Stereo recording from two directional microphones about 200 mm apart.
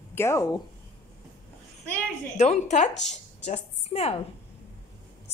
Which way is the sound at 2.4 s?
35° left (ahead or behind).